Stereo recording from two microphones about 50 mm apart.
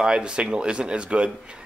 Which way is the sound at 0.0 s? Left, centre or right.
Centre.